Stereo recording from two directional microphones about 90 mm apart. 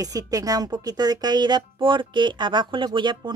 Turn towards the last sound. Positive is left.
turn(degrees=-55)  # may be behind; listen again after turning